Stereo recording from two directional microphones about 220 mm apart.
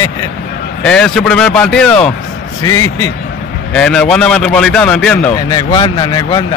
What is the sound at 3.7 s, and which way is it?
A man's voice, 5° left (ahead or behind).